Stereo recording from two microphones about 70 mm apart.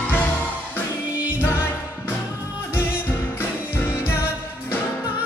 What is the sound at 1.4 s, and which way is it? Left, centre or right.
Music, left.